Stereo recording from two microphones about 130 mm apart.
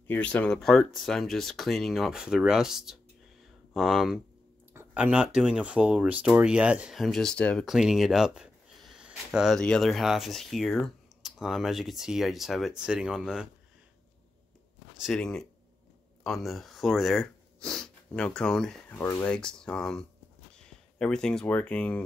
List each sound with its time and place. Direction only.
0.0 s speech: 10° left (ahead or behind); by 13.5 s 5° right (ahead or behind)
15.0 s speech: 5° left (ahead or behind)
18.9 s speech: 20° left (ahead or behind)
19.3 s speech: 5° left (ahead or behind)